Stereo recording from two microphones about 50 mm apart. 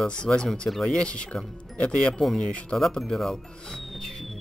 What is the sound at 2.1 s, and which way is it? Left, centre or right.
Speech, centre.